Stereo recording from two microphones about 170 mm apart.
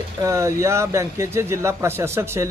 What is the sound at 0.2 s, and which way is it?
Speech, 15° right (ahead or behind).